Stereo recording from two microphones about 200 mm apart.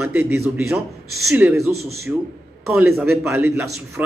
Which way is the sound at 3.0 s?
10° right (ahead or behind).